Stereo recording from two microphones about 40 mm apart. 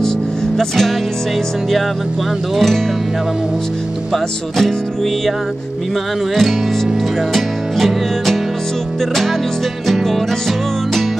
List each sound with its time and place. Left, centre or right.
0.6 s music: centre
2.5 s music: centre
4.1 s speech: centre
7.3 s music: centre